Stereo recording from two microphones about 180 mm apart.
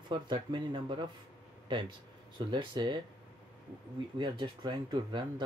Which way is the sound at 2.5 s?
25° right (ahead or behind).